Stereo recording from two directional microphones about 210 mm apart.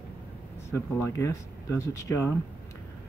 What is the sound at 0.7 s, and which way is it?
Speech, 10° left (ahead or behind).